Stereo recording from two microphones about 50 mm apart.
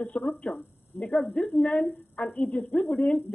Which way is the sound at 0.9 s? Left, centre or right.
Left.